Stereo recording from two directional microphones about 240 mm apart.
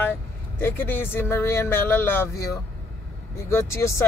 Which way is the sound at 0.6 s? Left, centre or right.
Centre.